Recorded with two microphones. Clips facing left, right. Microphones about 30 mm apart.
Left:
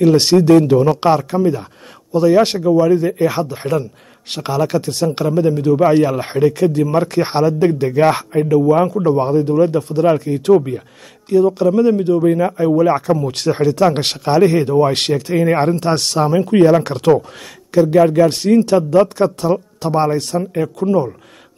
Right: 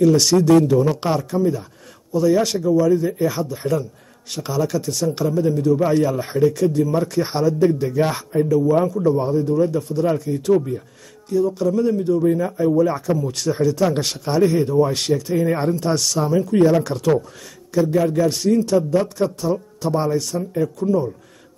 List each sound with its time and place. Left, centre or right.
0.0 s speech: left